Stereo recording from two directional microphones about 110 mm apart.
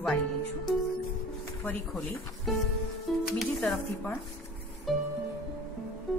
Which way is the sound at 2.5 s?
Centre (ahead or behind).